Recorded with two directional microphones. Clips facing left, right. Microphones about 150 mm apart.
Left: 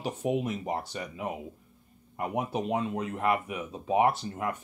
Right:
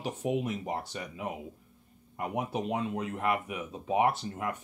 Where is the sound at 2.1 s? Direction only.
35° left (ahead or behind).